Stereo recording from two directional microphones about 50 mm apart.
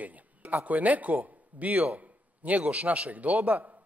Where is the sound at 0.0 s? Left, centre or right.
Right.